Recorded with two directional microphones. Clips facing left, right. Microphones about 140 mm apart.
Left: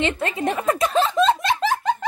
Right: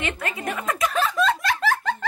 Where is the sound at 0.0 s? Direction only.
25° left (ahead or behind).